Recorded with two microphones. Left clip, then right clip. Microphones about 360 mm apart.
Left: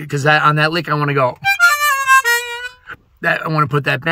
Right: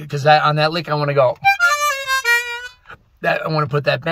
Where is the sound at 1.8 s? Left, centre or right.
Centre.